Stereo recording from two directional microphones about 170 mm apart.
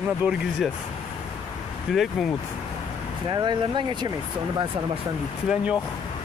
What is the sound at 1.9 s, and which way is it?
Speech, centre (ahead or behind).